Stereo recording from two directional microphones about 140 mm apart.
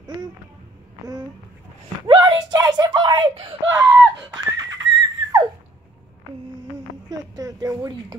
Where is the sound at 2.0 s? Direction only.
30° right (ahead or behind).